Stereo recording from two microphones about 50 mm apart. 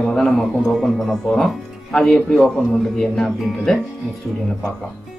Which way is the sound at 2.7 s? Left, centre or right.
Centre.